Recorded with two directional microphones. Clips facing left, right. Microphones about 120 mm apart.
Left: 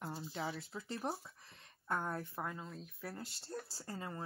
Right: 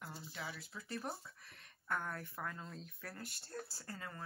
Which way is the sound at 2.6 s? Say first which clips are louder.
Left 3 dB; 5° left (ahead or behind).